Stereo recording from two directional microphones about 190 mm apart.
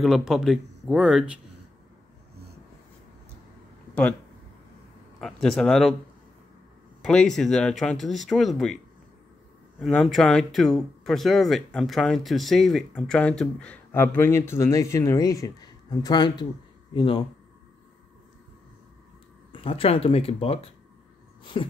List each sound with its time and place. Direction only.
0.0 s speech: centre (ahead or behind)
5.2 s speech: centre (ahead or behind)
7.0 s speech: 5° left (ahead or behind)
9.8 s speech: centre (ahead or behind); by 17.2 s 25° left (ahead or behind)
19.5 s speech: 30° left (ahead or behind)